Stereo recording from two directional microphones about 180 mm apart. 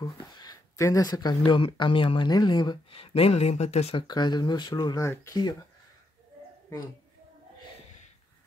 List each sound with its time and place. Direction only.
0.0 s speech: 20° left (ahead or behind)